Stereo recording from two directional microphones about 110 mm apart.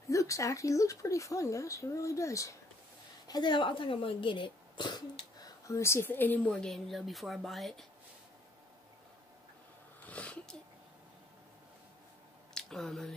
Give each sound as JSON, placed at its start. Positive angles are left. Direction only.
{"t": 0.1, "sound": "speech", "side_deg": 30}
{"t": 3.3, "sound": "speech", "side_deg": 40}
{"t": 10.0, "sound": "a sound", "side_deg": 10}
{"t": 12.5, "sound": "speech", "side_deg": 5}